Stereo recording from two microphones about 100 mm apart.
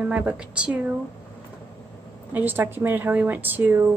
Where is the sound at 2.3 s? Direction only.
20° right (ahead or behind).